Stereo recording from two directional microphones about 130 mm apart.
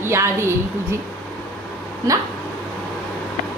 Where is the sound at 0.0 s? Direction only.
20° right (ahead or behind).